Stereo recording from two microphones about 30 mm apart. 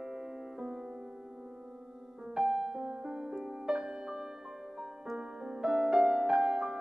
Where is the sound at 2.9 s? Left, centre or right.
Right.